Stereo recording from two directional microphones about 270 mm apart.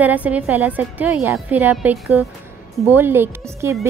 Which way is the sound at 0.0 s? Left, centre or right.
Centre.